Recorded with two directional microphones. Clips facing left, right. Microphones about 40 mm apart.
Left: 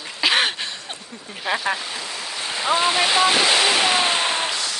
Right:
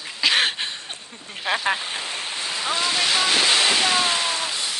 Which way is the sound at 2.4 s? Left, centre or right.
Left.